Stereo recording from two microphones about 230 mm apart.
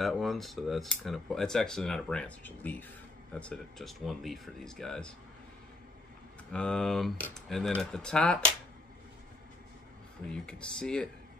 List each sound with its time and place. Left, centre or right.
0.0 s speech: centre
6.5 s speech: centre
10.3 s speech: centre